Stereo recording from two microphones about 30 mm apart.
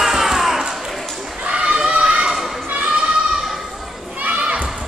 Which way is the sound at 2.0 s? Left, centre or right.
Right.